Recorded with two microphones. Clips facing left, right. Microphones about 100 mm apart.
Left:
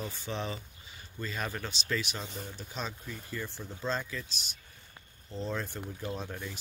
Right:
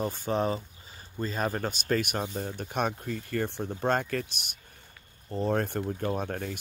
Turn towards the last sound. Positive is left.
turn(degrees=-55)  # may be behind; listen again after turning